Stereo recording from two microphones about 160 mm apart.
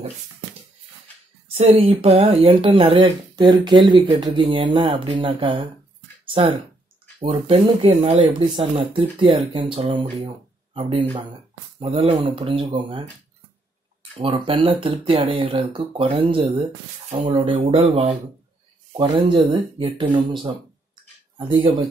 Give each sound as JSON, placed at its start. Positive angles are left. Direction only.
{"t": 1.5, "sound": "speech", "side_deg": -40}
{"t": 7.2, "sound": "speech", "side_deg": -40}
{"t": 14.1, "sound": "speech", "side_deg": -35}
{"t": 20.4, "sound": "a sound", "side_deg": -30}